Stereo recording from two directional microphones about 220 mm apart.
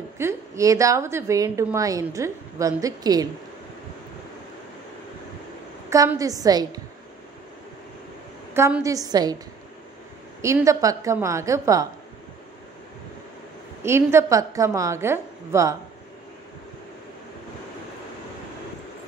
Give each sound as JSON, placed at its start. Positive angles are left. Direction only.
{"t": 0.2, "sound": "a woman's voice", "side_deg": -15}
{"t": 5.9, "sound": "a woman's voice", "side_deg": -15}
{"t": 8.5, "sound": "a woman's voice", "side_deg": -10}
{"t": 10.4, "sound": "a woman's voice", "side_deg": -15}
{"t": 13.8, "sound": "a woman's voice", "side_deg": -10}